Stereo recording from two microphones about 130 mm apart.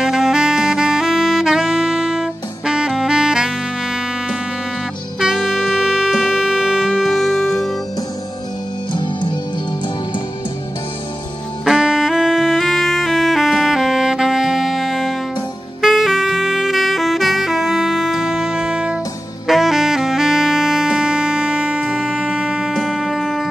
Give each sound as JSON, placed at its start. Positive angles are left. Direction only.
{"t": 0.0, "sound": "saxophone", "side_deg": -5}
{"t": 5.2, "sound": "music", "side_deg": 0}
{"t": 8.9, "sound": "music", "side_deg": 35}
{"t": 11.6, "sound": "saxophone", "side_deg": 0}
{"t": 22.8, "sound": "music", "side_deg": 0}